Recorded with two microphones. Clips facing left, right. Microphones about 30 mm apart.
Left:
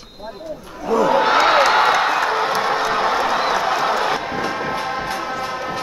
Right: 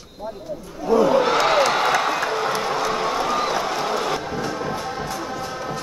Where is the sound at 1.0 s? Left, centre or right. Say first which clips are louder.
Left 5 dB; left.